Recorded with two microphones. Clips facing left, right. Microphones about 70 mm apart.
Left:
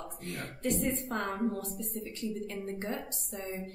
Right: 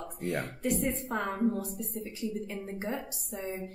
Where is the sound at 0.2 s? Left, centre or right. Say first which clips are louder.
Right 5 dB; centre.